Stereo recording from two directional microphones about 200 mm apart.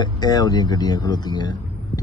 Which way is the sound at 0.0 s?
20° left (ahead or behind).